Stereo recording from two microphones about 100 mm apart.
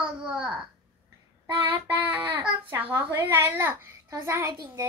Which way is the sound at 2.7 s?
20° right (ahead or behind).